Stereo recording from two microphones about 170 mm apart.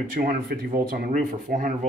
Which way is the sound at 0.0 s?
55° right (ahead or behind).